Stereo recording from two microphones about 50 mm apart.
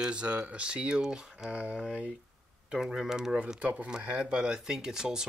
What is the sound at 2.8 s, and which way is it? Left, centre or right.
Speech, centre.